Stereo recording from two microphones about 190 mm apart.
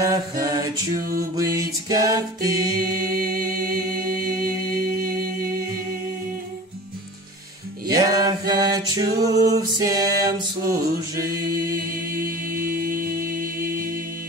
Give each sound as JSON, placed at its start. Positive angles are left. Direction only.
{"t": 0.0, "sound": "a capella", "side_deg": -15}
{"t": 1.3, "sound": "music", "side_deg": -20}
{"t": 4.4, "sound": "music", "side_deg": -50}
{"t": 7.9, "sound": "music", "side_deg": -20}
{"t": 11.5, "sound": "mantra", "side_deg": -50}